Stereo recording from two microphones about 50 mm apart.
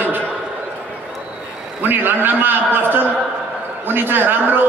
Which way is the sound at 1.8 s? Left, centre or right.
Right.